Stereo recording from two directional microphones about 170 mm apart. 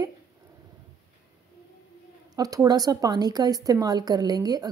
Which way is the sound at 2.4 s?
20° right (ahead or behind).